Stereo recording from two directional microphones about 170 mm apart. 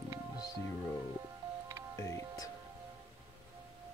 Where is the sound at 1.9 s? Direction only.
15° left (ahead or behind).